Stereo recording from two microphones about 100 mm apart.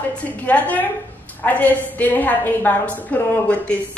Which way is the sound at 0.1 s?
15° left (ahead or behind).